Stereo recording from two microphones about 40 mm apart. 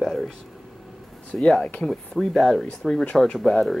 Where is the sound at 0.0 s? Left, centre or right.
Centre.